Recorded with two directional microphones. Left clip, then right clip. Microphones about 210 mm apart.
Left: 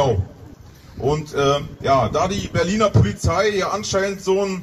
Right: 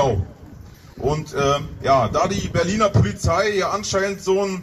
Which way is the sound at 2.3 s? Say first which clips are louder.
Even; 10° left (ahead or behind).